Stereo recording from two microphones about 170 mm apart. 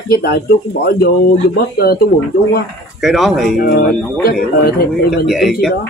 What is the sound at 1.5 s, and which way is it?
Speech, 65° left (ahead or behind).